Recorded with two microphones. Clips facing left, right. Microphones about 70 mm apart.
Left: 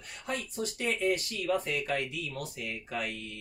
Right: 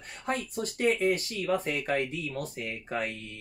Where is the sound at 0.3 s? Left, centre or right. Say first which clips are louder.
Right 3 dB; right.